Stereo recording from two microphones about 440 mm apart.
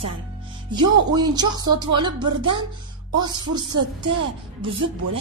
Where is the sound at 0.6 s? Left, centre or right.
Centre.